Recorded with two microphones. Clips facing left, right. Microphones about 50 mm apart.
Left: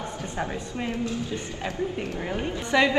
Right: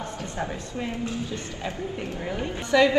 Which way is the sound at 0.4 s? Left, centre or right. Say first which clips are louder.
Left 1 dB; centre.